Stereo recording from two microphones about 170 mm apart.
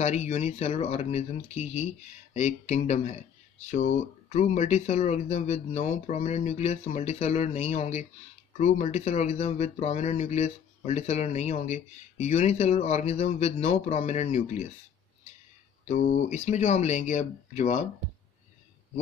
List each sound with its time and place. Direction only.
0.0 s speech: 40° left (ahead or behind)
15.9 s speech: 45° left (ahead or behind)